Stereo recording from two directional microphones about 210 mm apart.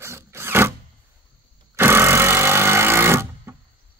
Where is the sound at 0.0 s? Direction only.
10° right (ahead or behind).